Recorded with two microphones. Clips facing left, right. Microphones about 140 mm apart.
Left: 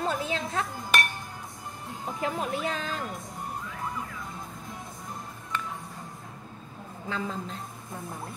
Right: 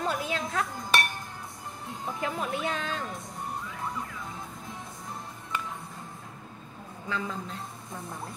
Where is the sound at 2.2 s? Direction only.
35° left (ahead or behind).